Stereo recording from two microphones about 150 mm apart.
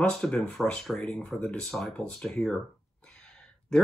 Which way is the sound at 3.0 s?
5° left (ahead or behind).